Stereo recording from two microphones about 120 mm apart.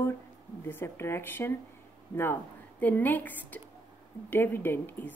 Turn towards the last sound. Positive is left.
turn(degrees=15)  # may be behind; listen again after turning